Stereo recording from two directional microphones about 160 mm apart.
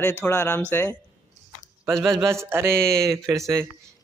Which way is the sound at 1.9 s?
Centre (ahead or behind).